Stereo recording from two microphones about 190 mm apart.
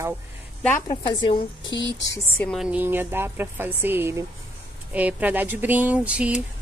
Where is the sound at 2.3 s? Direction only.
10° left (ahead or behind).